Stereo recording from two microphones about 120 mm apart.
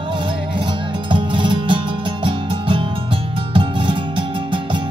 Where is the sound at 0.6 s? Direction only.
40° right (ahead or behind).